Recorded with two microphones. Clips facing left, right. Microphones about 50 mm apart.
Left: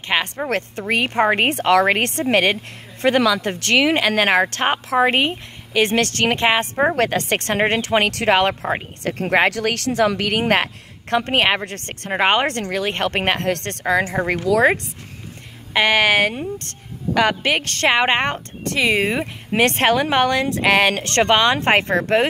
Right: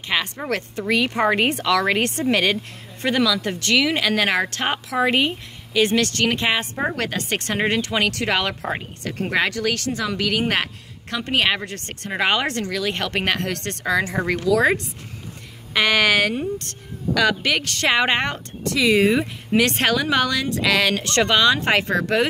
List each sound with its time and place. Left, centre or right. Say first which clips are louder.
0.0 s a woman's voice: left 3 dB; left
9.5 s a woman's voice: left 2 dB; left
12.1 s a woman's voice: left 4 dB; left
17.8 s speech: left 3 dB; left
19.5 s speech: left 2 dB; left